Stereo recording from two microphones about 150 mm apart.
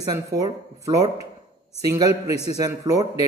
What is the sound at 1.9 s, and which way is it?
A man's voice, 25° right (ahead or behind).